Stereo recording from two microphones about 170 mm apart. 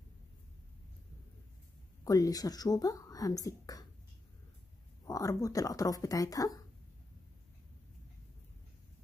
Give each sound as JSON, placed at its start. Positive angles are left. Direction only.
{"t": 2.0, "sound": "speech", "side_deg": 20}
{"t": 5.0, "sound": "speech", "side_deg": 20}